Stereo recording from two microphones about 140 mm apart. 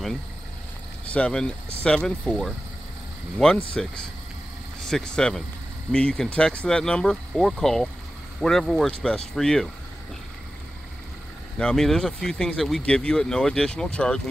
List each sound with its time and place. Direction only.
1.0 s speech: 10° left (ahead or behind)
11.5 s speech: 5° left (ahead or behind)